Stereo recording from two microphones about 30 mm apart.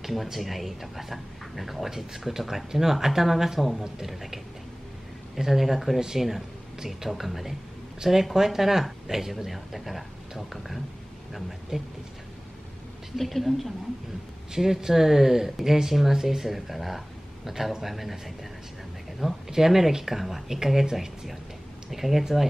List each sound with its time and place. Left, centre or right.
0.0 s speech: centre
5.9 s speech: centre
6.9 s speech: centre
11.7 s speech: centre
13.1 s speech: centre
14.5 s speech: centre
20.2 s speech: centre
21.9 s speech: centre